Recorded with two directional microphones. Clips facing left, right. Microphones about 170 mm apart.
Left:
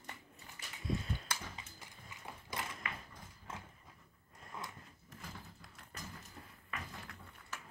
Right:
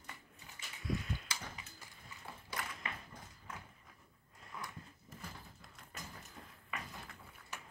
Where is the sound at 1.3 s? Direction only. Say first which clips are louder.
Left 3 dB; 55° left (ahead or behind).